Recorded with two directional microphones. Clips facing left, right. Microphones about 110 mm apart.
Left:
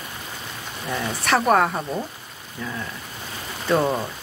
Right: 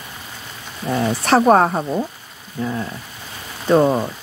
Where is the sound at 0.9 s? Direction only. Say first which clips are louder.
Right 6 dB; 35° right (ahead or behind).